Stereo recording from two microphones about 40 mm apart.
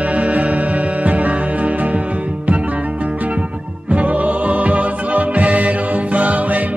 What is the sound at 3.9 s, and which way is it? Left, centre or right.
Music, right.